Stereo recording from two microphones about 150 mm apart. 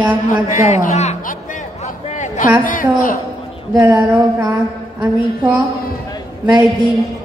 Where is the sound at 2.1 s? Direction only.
55° left (ahead or behind).